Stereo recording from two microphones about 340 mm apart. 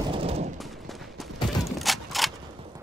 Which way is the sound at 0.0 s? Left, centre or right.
Centre.